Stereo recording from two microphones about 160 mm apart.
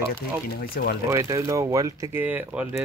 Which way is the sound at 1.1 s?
20° right (ahead or behind).